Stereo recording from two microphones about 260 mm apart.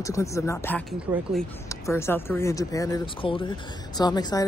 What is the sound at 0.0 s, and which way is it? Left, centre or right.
Speech, centre.